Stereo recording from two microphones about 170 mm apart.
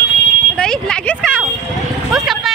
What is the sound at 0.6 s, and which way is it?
Speech, 5° left (ahead or behind).